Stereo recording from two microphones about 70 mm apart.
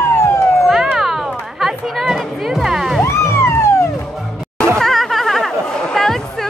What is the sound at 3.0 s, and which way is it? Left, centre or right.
Music, left.